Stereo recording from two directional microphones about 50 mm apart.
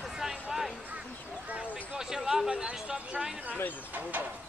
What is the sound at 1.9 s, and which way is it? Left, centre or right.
Speech, centre.